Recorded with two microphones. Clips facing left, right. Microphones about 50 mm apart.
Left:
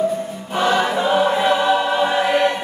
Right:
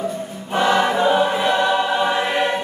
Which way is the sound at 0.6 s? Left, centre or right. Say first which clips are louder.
Right 1 dB; centre.